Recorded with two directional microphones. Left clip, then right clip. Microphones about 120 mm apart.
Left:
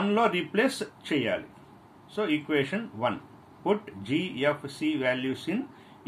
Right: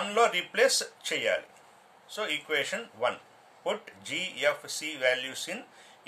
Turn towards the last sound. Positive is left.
turn(degrees=-30)  # may be behind; listen again after turning